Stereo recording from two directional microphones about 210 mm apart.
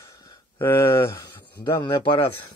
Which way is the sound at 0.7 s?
20° left (ahead or behind).